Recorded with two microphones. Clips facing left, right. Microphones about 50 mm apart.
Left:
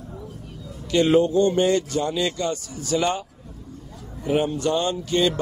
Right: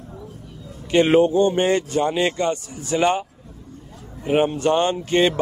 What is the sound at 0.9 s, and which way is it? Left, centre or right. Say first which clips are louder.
Speech: right 2 dB; right.